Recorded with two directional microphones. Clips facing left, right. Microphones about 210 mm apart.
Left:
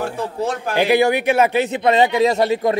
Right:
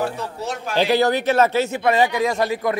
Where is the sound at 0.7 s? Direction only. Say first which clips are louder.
Left 2 dB; 15° left (ahead or behind).